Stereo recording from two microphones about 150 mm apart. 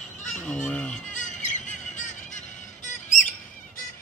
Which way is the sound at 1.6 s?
55° left (ahead or behind).